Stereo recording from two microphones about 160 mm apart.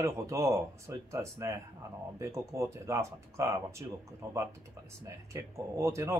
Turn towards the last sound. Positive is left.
turn(degrees=-15)  # may be behind; listen again after turning